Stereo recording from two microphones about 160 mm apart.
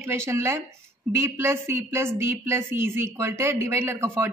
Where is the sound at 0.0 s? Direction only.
15° right (ahead or behind).